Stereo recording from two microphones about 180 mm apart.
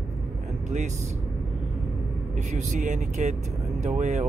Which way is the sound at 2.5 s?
45° right (ahead or behind).